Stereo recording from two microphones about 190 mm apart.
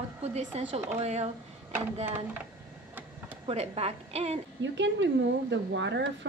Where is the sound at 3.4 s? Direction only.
30° right (ahead or behind).